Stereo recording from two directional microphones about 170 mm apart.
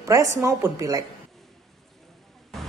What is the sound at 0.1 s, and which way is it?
Speech, 15° right (ahead or behind).